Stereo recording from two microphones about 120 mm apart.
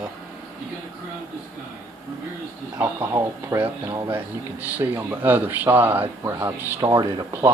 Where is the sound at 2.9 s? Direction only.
20° right (ahead or behind).